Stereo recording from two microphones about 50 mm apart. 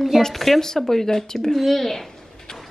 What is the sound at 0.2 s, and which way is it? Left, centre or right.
Speech, centre.